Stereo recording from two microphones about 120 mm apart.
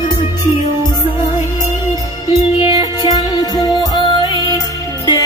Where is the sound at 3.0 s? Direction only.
35° left (ahead or behind).